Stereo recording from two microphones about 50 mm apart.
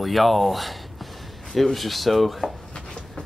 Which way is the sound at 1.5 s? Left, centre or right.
Centre.